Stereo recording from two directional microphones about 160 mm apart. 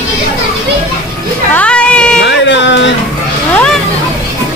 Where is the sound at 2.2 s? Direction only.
90° left.